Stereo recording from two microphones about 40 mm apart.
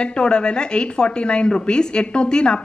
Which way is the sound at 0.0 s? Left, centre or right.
Left.